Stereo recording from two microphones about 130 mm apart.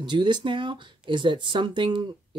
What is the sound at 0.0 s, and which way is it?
Speech, 35° right (ahead or behind).